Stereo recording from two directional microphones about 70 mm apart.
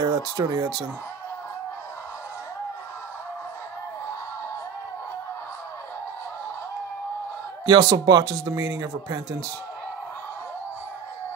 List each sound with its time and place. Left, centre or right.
0.0 s speech: right
7.6 s speech: right